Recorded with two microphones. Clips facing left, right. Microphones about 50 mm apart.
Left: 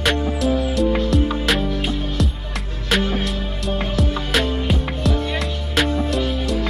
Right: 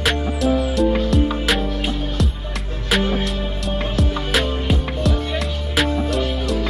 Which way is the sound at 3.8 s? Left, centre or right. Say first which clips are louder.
Right 1 dB; centre.